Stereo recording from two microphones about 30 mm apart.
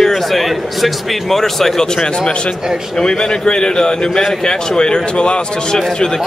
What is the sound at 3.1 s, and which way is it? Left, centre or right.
Speech, left.